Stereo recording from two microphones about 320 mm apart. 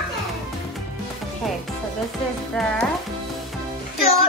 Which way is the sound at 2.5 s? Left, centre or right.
Centre.